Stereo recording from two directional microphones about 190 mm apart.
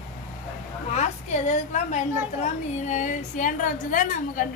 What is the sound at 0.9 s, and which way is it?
A woman's voice, 40° left (ahead or behind).